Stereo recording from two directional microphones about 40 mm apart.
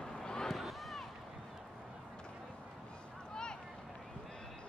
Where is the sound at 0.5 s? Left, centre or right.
Centre.